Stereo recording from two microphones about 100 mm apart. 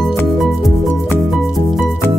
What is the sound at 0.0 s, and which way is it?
Music, centre (ahead or behind).